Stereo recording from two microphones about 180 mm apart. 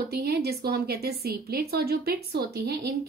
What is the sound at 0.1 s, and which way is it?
A woman's voice, 60° right (ahead or behind).